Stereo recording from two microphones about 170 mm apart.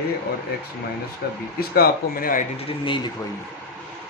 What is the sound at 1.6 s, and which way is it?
Speech, 65° left (ahead or behind).